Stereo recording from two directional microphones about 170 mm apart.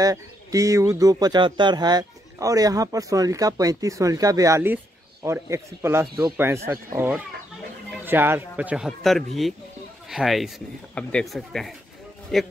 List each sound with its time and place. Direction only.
0.0 s speech: 20° right (ahead or behind); by 12.5 s centre (ahead or behind)